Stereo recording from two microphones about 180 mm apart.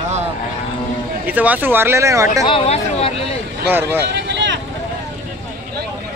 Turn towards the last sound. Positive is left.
turn(degrees=-85)